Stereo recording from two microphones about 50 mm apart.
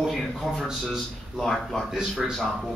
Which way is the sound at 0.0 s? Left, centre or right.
Centre.